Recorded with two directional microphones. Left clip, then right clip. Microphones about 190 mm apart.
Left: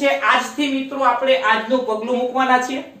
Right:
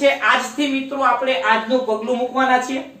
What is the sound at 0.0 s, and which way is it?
A woman's voice, 20° right (ahead or behind).